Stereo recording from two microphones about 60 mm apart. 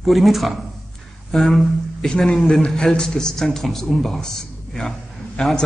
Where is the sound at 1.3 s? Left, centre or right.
Centre.